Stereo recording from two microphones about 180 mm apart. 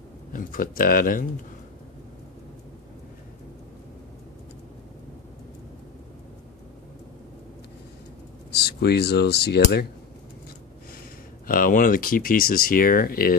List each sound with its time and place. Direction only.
0.3 s speech: 50° left (ahead or behind)
8.5 s speech: 65° left (ahead or behind)
11.4 s speech: 50° left (ahead or behind)